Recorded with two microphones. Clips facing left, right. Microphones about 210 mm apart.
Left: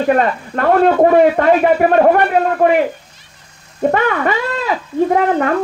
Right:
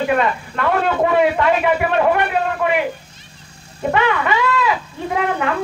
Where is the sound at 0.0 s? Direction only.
45° left (ahead or behind).